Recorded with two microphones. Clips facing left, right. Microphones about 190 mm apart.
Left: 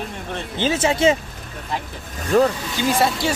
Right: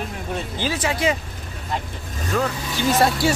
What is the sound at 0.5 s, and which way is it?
Speech, 25° left (ahead or behind).